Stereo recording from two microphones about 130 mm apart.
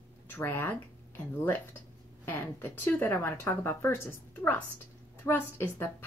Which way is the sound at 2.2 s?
15° left (ahead or behind).